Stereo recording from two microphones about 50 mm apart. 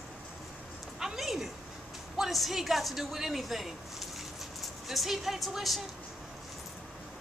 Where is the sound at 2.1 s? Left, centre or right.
Centre.